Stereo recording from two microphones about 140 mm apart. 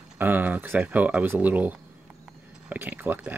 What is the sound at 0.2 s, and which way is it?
Speech, 15° right (ahead or behind).